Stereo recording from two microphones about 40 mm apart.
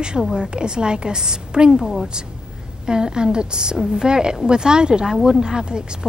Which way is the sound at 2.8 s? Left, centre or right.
Right.